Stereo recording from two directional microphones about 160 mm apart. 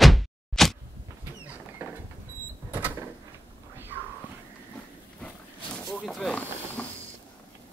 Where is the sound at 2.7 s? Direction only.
10° right (ahead or behind).